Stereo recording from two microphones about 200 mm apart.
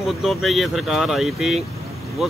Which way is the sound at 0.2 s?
Centre (ahead or behind).